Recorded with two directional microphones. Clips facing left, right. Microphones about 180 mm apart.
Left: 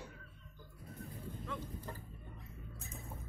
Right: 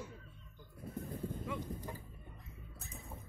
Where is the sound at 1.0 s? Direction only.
45° right (ahead or behind).